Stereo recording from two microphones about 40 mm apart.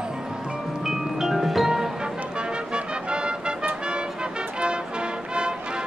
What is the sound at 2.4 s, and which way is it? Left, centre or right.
Music, right.